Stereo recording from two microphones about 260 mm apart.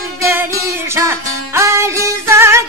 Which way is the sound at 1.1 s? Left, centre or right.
Centre.